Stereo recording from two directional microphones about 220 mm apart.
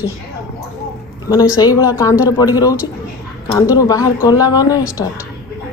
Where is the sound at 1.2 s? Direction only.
15° left (ahead or behind).